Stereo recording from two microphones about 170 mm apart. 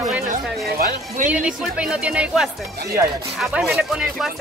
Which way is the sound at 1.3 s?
5° right (ahead or behind).